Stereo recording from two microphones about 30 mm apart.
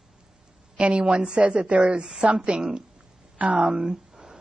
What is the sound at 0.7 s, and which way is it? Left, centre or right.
Speech, right.